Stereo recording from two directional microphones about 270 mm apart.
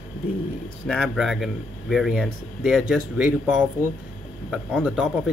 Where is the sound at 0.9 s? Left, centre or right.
Centre.